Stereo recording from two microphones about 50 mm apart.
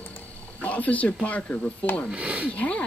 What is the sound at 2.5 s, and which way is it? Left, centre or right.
Speech, left.